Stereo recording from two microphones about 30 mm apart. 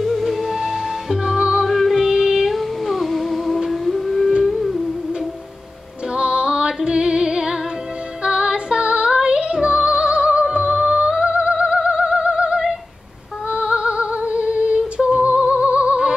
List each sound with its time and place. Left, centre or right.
0.0 s music: centre
2.1 s child singing: centre
2.5 s humming: centre
4.5 s music: centre
6.1 s music: right
15.3 s music: right